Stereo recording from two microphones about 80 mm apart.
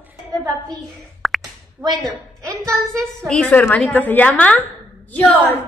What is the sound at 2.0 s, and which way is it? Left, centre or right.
Speech, right.